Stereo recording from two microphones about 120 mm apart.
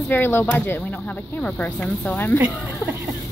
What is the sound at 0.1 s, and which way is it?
Speech, 20° left (ahead or behind).